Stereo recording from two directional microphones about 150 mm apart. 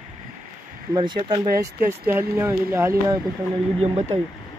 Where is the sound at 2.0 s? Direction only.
15° right (ahead or behind).